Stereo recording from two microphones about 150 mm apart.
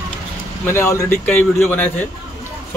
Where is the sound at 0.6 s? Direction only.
20° left (ahead or behind).